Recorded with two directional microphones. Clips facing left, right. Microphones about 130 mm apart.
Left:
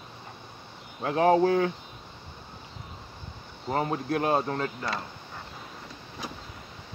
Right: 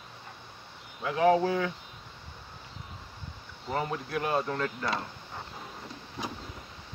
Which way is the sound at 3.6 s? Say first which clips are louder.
Left 4 dB; 35° left (ahead or behind).